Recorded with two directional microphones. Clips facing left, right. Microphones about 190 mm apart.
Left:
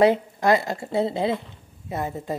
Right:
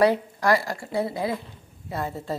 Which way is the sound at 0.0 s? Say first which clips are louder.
Left 2 dB; 20° left (ahead or behind).